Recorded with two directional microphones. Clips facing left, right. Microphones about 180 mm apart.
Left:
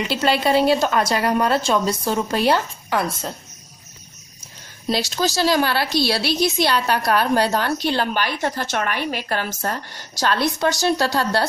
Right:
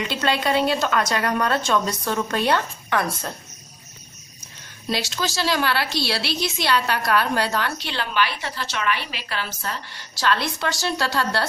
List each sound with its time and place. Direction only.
0.1 s a woman's voice: 30° left (ahead or behind)
4.8 s a woman's voice: 40° left (ahead or behind)